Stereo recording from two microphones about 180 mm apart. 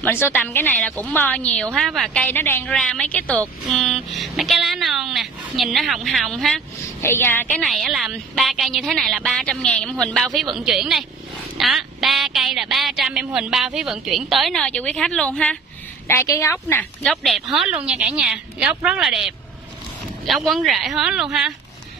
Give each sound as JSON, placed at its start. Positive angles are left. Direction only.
{"t": 0.0, "sound": "a woman's voice", "side_deg": 10}
{"t": 7.0, "sound": "a woman's voice", "side_deg": 10}
{"t": 7.6, "sound": "a woman's voice", "side_deg": 0}
{"t": 16.1, "sound": "a woman's voice", "side_deg": 15}
{"t": 17.0, "sound": "a woman's voice", "side_deg": 0}